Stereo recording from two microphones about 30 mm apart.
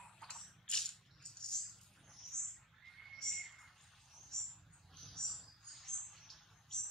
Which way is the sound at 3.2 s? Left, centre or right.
Centre.